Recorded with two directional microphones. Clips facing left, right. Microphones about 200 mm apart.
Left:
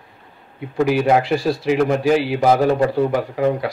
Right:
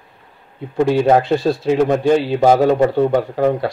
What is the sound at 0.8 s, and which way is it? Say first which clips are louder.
Speech: right 3 dB; 25° right (ahead or behind).